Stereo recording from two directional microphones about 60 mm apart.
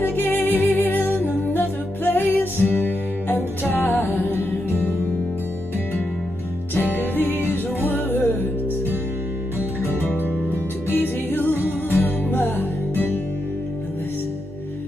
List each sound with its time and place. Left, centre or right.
0.0 s music: left
7.0 s music: left
10.9 s music: left